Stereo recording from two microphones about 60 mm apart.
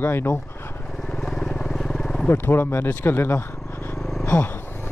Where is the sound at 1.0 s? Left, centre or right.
Centre.